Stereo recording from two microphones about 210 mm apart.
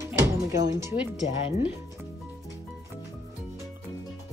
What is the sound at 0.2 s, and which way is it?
Speech, 15° right (ahead or behind).